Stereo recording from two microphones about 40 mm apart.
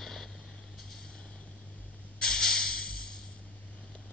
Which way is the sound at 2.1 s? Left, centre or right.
Centre.